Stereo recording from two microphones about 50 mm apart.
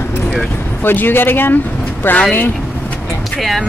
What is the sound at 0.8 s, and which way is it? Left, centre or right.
Speech, left.